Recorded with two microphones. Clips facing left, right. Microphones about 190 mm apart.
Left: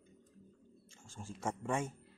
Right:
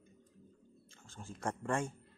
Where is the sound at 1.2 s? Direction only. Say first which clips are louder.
Even; 5° left (ahead or behind).